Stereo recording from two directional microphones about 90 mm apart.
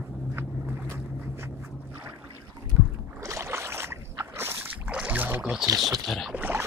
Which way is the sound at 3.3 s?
30° right (ahead or behind).